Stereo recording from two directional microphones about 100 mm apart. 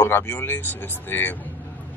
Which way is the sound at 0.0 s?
25° left (ahead or behind).